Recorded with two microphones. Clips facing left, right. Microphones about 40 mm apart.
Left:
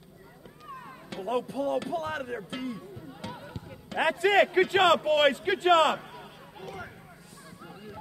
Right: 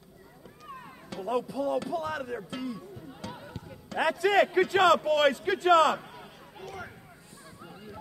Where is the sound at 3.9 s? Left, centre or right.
Left.